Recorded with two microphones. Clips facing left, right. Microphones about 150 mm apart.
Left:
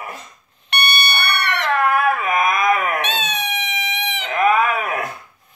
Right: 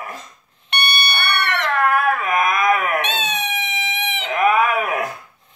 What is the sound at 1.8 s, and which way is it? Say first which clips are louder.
Dog: even; centre (ahead or behind).